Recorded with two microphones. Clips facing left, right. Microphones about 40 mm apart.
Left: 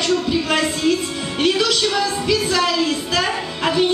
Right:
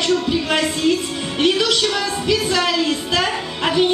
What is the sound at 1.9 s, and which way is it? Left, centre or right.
Music, centre.